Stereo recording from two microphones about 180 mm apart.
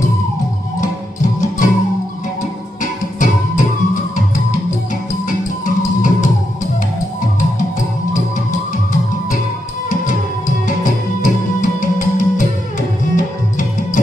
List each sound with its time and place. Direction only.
0.7 s music: 45° left (ahead or behind)
2.8 s music: 45° left (ahead or behind)
5.8 s music: 45° left (ahead or behind)
8.1 s music: 45° left (ahead or behind)